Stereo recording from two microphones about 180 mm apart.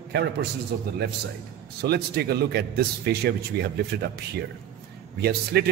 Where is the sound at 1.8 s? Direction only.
60° right (ahead or behind).